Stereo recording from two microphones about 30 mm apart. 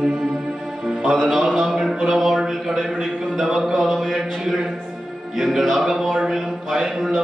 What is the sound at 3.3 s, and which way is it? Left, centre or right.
Speech, centre.